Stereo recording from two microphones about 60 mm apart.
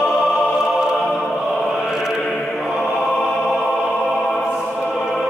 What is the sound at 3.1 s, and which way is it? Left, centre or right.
Music, centre.